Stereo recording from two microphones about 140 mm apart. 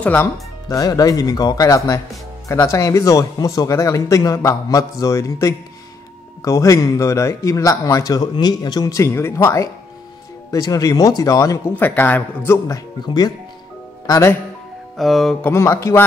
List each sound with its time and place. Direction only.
0.0 s a man's voice: 15° left (ahead or behind)
11.7 s a man's voice: 15° left (ahead or behind)
12.6 s a man's voice: 25° left (ahead or behind)
15.0 s music: centre (ahead or behind)
15.5 s a man's voice: 20° left (ahead or behind)